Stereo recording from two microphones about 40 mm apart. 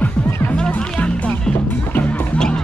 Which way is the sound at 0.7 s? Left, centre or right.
Left.